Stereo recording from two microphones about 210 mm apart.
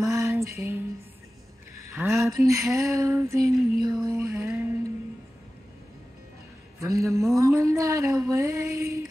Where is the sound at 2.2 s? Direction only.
15° right (ahead or behind).